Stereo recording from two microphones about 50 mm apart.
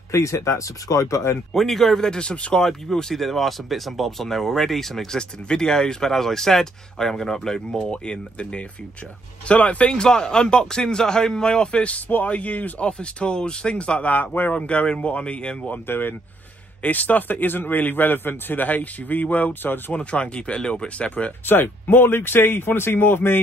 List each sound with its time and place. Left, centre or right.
0.1 s speech: left
1.5 s a man's voice: centre
2.6 s a man's voice: centre
14.1 s a man's voice: left
14.5 s speech: left
15.9 s speech: left
16.8 s a man's voice: left
21.5 s speech: left